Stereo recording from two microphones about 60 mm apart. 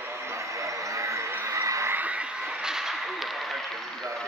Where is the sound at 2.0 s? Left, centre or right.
Right; by 3.8 s centre.